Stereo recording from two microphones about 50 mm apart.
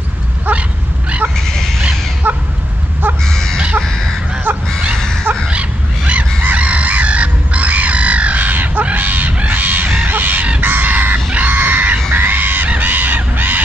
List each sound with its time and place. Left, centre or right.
0.5 s dog: right
2.3 s a sound: right
3.3 s crow: centre
3.5 s a sound: right
5.5 s wild animals: right
6.4 s bird: right
10.0 s fowl: right
10.6 s chicken: right
11.3 s screaming: right
12.6 s goose: right